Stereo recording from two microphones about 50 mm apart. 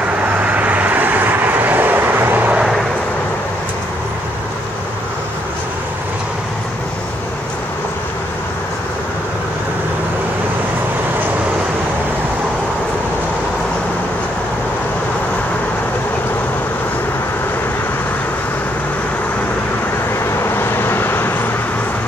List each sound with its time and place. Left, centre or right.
0.2 s vehicle: right
20.4 s vehicle: left